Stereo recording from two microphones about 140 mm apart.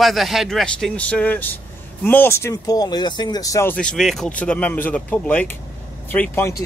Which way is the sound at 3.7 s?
5° left (ahead or behind).